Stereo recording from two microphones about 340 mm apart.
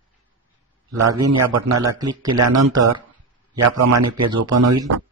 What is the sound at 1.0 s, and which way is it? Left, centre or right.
Speech, right.